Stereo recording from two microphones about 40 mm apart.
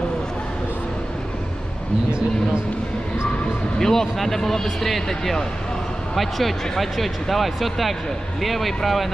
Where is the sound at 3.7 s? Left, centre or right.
Centre.